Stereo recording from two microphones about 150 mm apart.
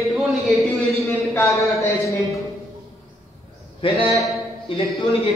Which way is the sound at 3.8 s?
35° left (ahead or behind).